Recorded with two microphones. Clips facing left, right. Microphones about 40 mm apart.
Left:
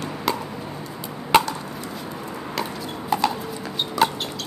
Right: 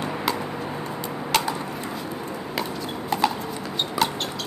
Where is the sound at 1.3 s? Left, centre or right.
Left.